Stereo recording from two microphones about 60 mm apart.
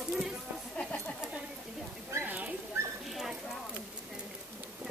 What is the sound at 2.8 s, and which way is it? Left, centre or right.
Dog, right.